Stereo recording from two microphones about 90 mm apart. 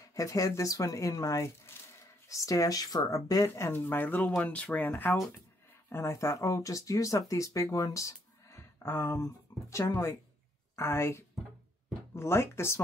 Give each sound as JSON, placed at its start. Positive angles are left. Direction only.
{"t": 0.0, "sound": "speech", "side_deg": 40}